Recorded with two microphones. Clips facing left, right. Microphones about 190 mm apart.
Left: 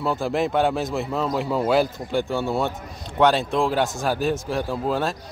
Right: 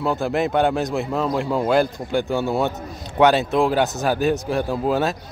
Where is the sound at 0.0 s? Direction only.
Centre (ahead or behind).